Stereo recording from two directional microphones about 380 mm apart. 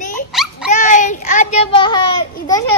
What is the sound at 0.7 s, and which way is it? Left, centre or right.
A child's voice, centre.